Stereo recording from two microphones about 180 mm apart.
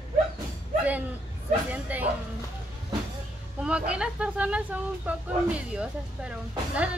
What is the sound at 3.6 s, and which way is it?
Speech, 5° right (ahead or behind).